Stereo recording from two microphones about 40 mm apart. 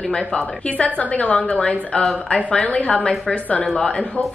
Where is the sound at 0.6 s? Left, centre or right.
Left; by 2.4 s centre.